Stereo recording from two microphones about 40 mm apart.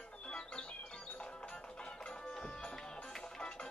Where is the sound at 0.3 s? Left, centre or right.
Left.